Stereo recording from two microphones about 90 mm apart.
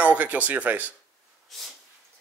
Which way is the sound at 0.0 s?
15° right (ahead or behind).